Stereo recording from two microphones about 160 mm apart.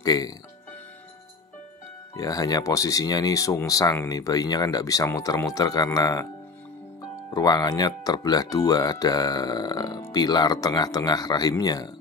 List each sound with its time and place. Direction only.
0.0 s speech: 25° left (ahead or behind)
2.1 s speech: 20° left (ahead or behind)
7.2 s speech: 25° left (ahead or behind)